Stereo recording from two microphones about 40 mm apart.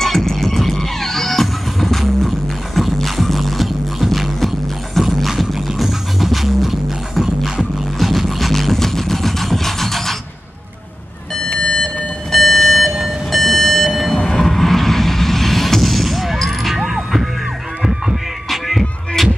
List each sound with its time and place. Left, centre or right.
0.0 s music: centre
11.4 s alarm clock: left
12.3 s clock: centre
14.1 s music: centre
18.5 s music: centre